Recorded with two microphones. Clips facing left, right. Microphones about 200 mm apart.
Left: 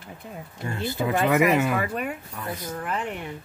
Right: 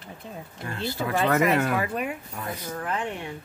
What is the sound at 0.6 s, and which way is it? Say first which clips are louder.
Speech: left 3 dB; 20° left (ahead or behind).